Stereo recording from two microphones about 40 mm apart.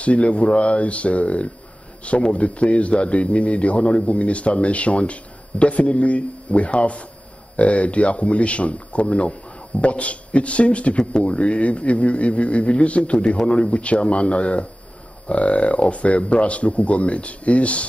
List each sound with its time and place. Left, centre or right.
0.0 s a man's voice: left